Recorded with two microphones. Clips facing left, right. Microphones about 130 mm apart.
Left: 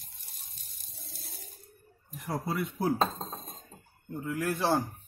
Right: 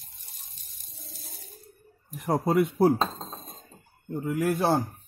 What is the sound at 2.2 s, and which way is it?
Speech, 90° right.